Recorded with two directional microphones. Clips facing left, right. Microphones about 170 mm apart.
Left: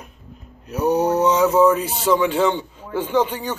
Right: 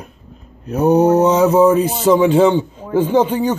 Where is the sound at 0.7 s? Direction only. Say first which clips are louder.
Right 6 dB; 55° right (ahead or behind); by 1.8 s 35° right (ahead or behind).